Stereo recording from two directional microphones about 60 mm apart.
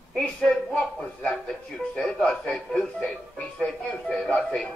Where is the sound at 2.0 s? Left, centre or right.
Centre.